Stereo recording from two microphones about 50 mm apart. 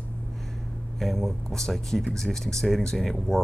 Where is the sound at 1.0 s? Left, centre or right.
Centre.